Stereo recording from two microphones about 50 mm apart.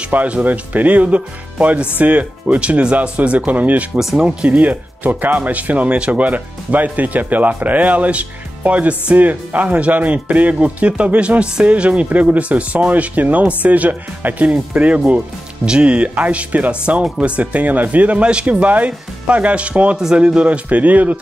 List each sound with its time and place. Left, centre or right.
0.1 s speech: right
4.0 s speech: centre
4.4 s speech: right
4.6 s speech: right